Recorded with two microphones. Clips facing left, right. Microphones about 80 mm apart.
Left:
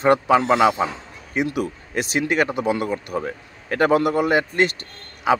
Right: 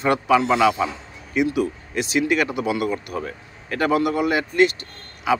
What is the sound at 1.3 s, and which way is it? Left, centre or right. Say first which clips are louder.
Speech: right 2 dB; left.